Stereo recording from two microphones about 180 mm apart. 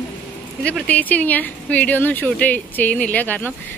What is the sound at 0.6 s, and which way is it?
Speech, 5° left (ahead or behind).